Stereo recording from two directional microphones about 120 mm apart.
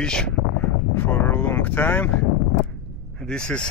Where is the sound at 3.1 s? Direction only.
5° left (ahead or behind).